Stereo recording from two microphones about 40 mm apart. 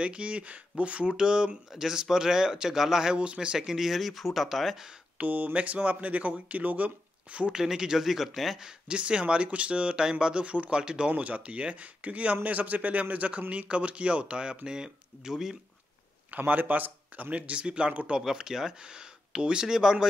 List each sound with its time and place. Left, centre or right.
0.0 s speech: right
1.1 s speech: right
3.2 s speech: right
3.5 s speech: centre
5.2 s speech: right
7.5 s speech: centre
8.6 s speech: right
10.8 s speech: right
11.1 s speech: right; by 15.5 s centre
16.3 s speech: right
17.3 s speech: right
18.2 s speech: centre